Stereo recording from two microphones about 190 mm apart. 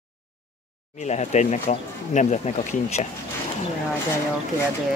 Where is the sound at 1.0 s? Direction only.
35° left (ahead or behind).